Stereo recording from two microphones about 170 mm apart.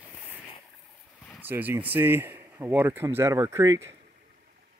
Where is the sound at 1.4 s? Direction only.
10° right (ahead or behind).